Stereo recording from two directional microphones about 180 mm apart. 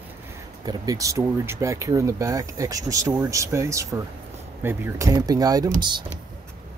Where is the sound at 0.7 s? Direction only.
20° right (ahead or behind).